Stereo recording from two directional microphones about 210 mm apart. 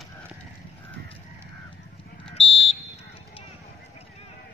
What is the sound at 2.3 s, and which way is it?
Fire alarm, 30° left (ahead or behind).